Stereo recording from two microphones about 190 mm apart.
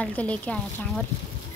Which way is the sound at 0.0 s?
5° left (ahead or behind).